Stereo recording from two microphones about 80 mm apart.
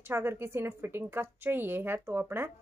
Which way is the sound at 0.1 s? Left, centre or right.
Right.